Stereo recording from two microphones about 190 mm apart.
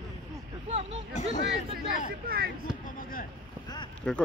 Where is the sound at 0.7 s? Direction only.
35° right (ahead or behind).